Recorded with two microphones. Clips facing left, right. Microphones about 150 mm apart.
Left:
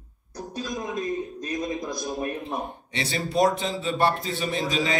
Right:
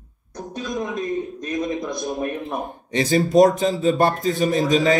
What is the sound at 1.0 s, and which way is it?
A man's voice, 20° right (ahead or behind).